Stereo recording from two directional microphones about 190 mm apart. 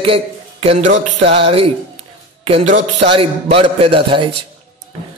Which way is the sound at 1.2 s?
30° right (ahead or behind).